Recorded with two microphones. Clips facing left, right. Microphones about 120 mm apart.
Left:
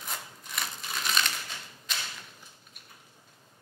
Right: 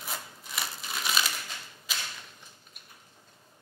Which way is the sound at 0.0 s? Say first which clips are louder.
Right 1 dB; 5° right (ahead or behind).